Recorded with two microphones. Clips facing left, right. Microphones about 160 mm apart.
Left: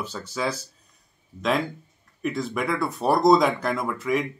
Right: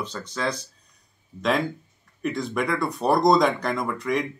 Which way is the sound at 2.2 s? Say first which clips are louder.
Right 1 dB; centre (ahead or behind).